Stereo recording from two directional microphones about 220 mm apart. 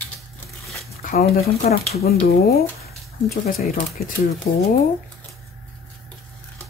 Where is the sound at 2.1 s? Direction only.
45° left (ahead or behind).